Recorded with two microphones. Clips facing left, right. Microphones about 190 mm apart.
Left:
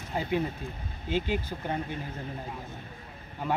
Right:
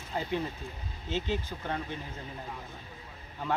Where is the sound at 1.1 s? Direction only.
10° left (ahead or behind).